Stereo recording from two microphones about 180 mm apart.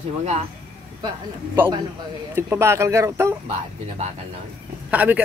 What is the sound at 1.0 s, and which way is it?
A man's voice, 25° right (ahead or behind).